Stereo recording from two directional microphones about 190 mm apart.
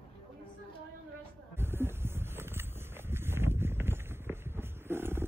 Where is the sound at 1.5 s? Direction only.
10° right (ahead or behind).